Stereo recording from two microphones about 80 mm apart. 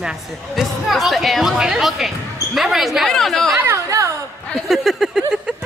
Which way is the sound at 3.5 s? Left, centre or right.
Right.